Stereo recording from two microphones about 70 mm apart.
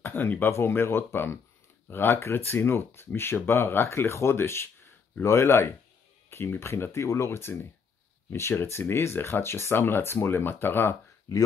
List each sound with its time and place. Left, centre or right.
0.0 s speech: left